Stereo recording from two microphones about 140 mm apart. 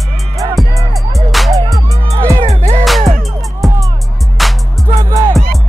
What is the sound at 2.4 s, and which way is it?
Music, 50° right (ahead or behind).